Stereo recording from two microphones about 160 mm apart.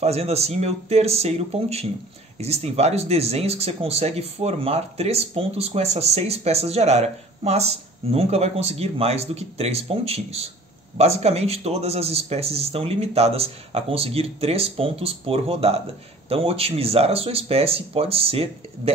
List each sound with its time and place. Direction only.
0.0 s speech: 40° right (ahead or behind)